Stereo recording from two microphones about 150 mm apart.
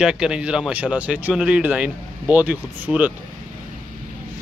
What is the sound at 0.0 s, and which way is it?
Speech, 5° right (ahead or behind).